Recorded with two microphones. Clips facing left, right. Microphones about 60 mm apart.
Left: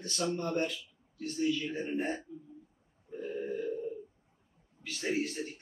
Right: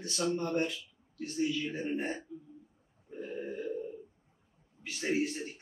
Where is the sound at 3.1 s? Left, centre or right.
Centre.